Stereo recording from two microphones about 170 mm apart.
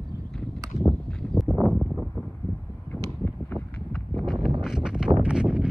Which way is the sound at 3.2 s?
10° left (ahead or behind).